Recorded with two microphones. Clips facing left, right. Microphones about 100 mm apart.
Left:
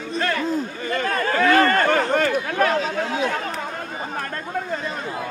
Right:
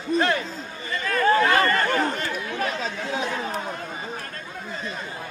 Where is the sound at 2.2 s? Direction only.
75° left (ahead or behind).